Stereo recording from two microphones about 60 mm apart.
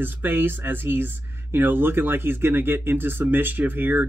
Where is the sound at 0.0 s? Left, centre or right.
Right.